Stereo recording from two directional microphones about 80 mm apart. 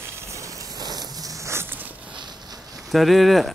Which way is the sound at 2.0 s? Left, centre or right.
Right.